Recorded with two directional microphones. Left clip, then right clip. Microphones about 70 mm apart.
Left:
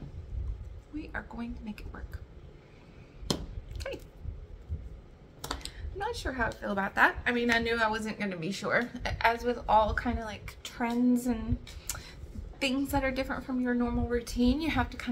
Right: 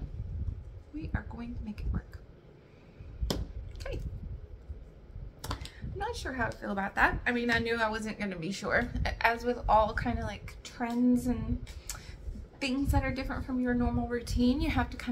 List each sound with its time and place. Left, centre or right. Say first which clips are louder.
0.9 s a woman's voice: left 2 dB; left
3.8 s a sound: left 3 dB; left
5.9 s a woman's voice: left 2 dB; centre
10.4 s a woman's voice: left 3 dB; left
11.9 s a sound: left 3 dB; left
12.5 s a woman's voice: left 2 dB; left
13.6 s a woman's voice: even; centre